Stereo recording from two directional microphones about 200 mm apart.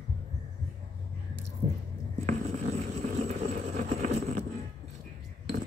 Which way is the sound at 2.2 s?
40° right (ahead or behind).